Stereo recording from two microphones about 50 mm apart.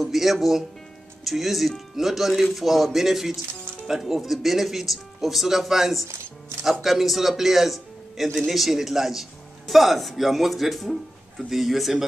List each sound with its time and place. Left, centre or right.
0.0 s speech: centre
6.0 s chopping: right
6.6 s speech: centre